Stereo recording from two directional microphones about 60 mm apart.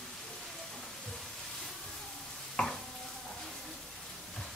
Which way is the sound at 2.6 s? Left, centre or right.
Centre.